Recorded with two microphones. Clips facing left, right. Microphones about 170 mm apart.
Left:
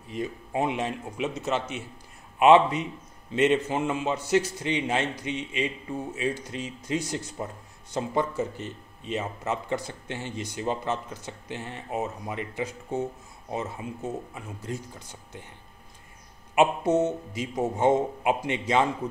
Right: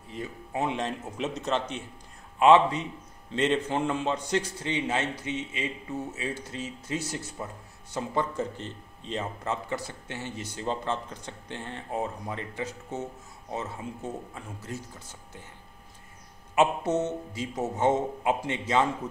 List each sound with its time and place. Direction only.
0.1 s speech: 15° left (ahead or behind)
16.5 s speech: 10° left (ahead or behind)